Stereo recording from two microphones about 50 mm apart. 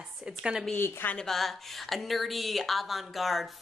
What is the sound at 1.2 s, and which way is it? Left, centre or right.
Speech, centre.